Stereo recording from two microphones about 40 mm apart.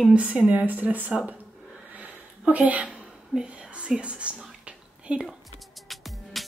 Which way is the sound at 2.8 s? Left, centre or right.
Right.